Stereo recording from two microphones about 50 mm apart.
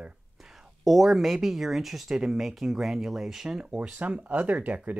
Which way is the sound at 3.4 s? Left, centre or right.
Centre.